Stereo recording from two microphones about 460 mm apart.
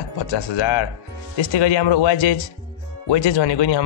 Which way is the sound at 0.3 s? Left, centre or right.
Left.